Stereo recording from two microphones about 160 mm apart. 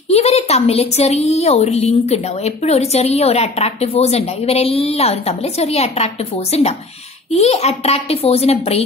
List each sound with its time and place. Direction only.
0.1 s a woman's voice: 40° left (ahead or behind)